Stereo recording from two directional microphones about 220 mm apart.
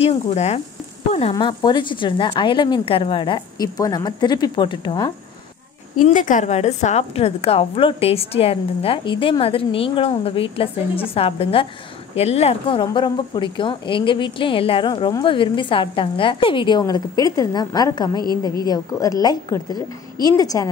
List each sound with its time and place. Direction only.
0.0 s a woman's voice: 30° left (ahead or behind)
1.3 s a woman's voice: 20° left (ahead or behind)
6.0 s a woman's voice: 35° left (ahead or behind); by 20.6 s 15° left (ahead or behind)